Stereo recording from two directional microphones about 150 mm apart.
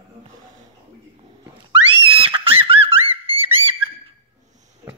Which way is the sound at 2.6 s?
40° right (ahead or behind).